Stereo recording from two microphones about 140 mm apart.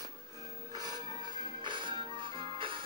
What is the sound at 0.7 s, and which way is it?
Music, 30° right (ahead or behind).